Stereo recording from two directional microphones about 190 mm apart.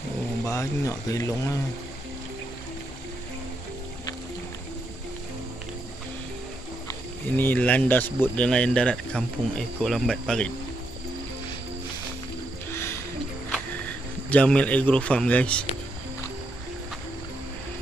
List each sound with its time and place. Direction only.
0.5 s speech: 15° left (ahead or behind)
7.3 s speech: 10° left (ahead or behind)
13.5 s a sound: 5° left (ahead or behind)